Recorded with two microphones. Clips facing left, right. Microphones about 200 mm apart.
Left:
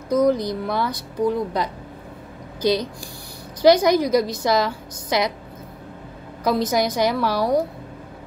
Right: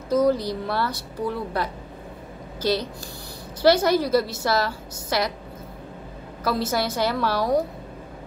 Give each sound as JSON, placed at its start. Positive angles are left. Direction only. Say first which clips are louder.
{"t": 0.3, "sound": "a woman's voice", "louder": "left 2 dB", "side_deg": 15}
{"t": 6.4, "sound": "a woman's voice", "louder": "left 4 dB", "side_deg": 15}